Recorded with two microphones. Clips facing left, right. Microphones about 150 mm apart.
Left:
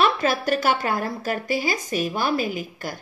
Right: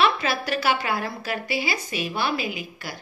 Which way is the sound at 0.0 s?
45° left (ahead or behind).